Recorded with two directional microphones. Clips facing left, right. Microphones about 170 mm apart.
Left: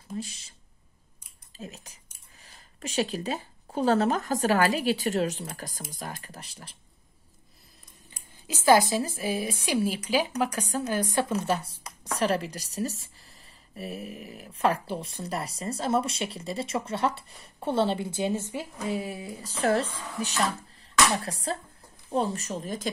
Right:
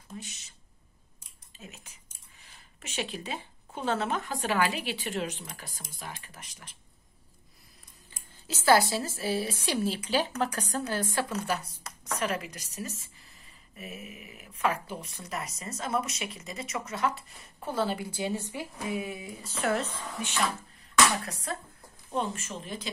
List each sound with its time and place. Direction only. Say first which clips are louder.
0.1 s speech: left 8 dB; 35° left (ahead or behind)
1.6 s speech: left 7 dB; 35° left (ahead or behind)
8.1 s speech: left 2 dB; 15° left (ahead or behind)
18.9 s speech: left 2 dB; 35° left (ahead or behind)